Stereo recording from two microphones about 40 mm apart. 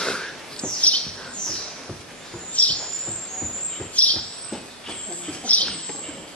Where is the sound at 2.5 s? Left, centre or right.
Left.